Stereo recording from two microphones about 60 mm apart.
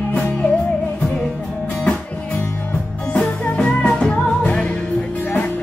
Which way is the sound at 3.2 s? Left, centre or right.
Centre.